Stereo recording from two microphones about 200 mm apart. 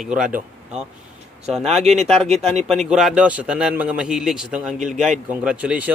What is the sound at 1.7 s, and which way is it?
Speech, 35° right (ahead or behind).